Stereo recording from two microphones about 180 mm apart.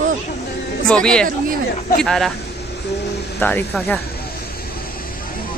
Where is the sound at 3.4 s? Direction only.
10° left (ahead or behind).